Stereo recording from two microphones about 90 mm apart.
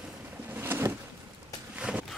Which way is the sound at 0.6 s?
25° right (ahead or behind).